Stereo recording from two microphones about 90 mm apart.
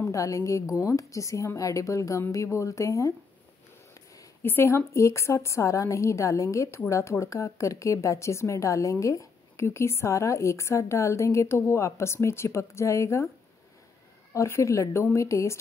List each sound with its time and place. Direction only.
0.0 s a woman's voice: 35° left (ahead or behind)
4.4 s a woman's voice: 25° left (ahead or behind)
14.3 s a woman's voice: 35° left (ahead or behind)